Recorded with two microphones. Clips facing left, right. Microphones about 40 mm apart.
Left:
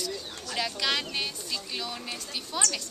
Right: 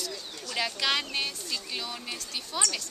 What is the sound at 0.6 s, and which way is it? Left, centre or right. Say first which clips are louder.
A woman's voice: right 1 dB; centre.